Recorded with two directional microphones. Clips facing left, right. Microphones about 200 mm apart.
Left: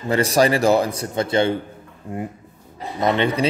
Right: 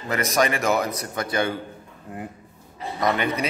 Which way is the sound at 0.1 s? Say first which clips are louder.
Left 5 dB; 30° left (ahead or behind).